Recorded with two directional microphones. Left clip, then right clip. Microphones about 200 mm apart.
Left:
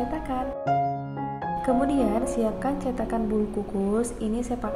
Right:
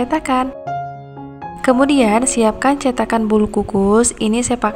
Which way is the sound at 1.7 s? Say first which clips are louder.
Right 12 dB; 15° right (ahead or behind).